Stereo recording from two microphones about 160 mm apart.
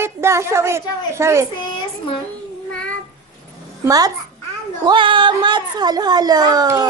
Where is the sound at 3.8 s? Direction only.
25° right (ahead or behind).